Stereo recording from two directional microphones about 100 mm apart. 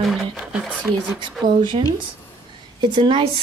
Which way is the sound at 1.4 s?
50° right (ahead or behind).